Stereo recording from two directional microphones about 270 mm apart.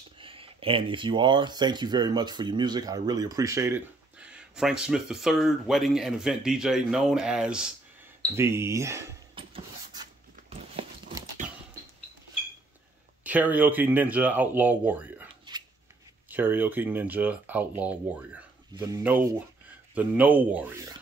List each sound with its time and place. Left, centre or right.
0.2 s speech: centre
8.4 s a sound: centre
10.8 s horse: centre
13.2 s speech: centre
16.3 s speech: centre